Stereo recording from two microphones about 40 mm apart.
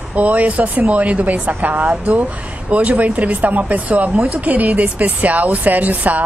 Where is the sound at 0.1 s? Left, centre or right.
Right.